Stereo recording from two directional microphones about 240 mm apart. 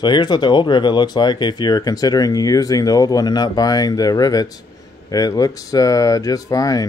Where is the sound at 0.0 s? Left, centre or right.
Centre.